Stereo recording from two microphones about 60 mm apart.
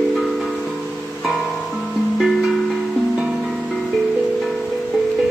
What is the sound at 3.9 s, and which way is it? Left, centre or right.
Music, centre.